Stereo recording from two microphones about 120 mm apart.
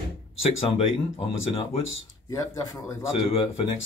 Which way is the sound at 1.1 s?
50° left (ahead or behind).